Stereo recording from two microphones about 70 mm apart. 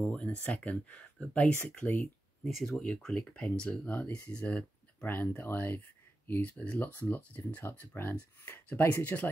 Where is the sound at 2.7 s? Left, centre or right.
Centre; by 6.5 s left.